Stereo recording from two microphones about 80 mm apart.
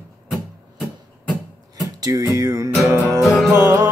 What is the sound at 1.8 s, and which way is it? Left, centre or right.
Speech, right.